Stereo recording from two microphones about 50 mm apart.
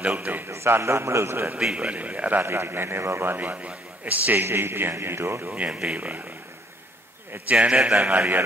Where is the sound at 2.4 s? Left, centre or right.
Right.